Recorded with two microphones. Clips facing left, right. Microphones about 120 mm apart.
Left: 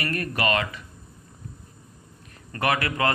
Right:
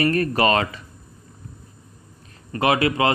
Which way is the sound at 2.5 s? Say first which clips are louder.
Right 5 dB; 20° right (ahead or behind).